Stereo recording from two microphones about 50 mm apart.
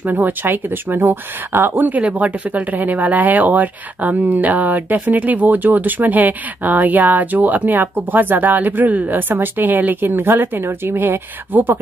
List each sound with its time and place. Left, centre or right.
0.0 s speech: right